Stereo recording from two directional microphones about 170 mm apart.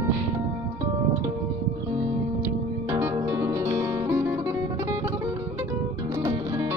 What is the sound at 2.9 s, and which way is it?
Music, 15° right (ahead or behind).